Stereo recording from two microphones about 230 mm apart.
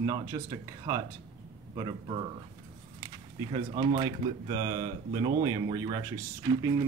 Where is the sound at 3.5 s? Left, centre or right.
Centre.